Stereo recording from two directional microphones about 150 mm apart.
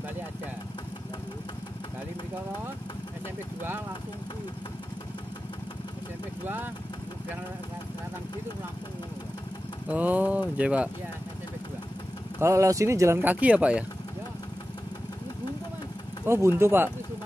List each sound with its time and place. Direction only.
6.4 s speech: 15° right (ahead or behind)
9.8 s speech: 10° right (ahead or behind)
12.4 s speech: 20° right (ahead or behind)
16.3 s speech: 15° right (ahead or behind)